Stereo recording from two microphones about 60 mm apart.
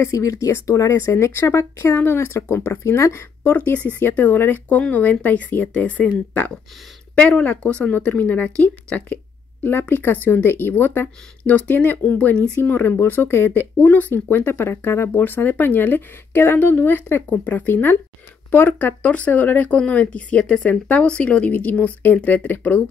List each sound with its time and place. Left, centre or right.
0.0 s speech: left
0.9 s speech: left
3.5 s speech: left
13.5 s speech: left